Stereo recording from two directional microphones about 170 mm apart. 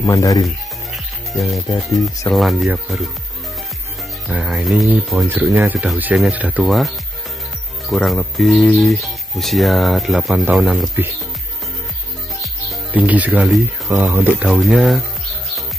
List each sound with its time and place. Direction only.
0.0 s speech: 20° left (ahead or behind)
2.2 s speech: centre (ahead or behind)
4.3 s speech: 5° right (ahead or behind)
5.1 s speech: 15° right (ahead or behind)
7.9 s speech: centre (ahead or behind)
12.9 s speech: 10° right (ahead or behind)